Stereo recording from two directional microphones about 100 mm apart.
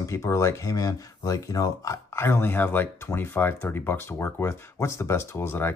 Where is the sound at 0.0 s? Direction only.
30° left (ahead or behind).